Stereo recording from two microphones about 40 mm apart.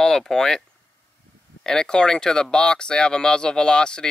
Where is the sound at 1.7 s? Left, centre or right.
Centre.